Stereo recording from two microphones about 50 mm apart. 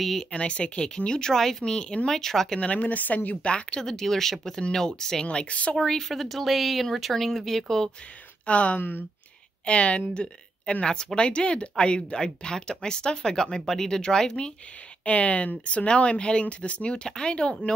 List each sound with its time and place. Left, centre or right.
0.0 s speech: centre
0.3 s speech: left
2.6 s speech: left
3.3 s speech: left
5.8 s speech: centre
8.5 s speech: left
15.0 s speech: left